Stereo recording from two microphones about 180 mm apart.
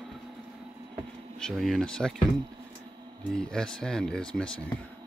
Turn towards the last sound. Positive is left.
turn(degrees=5)  # may be behind; listen again after turning